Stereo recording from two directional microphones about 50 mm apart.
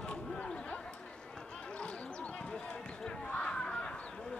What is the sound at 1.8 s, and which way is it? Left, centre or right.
Basketball bounce, centre.